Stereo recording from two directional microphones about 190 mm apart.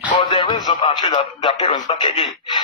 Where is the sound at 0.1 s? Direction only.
25° left (ahead or behind).